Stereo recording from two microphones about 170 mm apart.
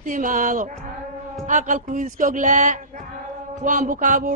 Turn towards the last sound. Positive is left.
turn(degrees=-50)  # may be behind; listen again after turning